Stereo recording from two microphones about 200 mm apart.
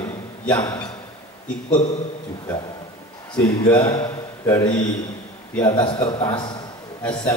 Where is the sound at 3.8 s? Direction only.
15° left (ahead or behind).